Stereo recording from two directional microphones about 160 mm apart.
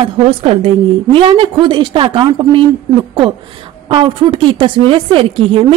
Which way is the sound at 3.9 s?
30° right (ahead or behind).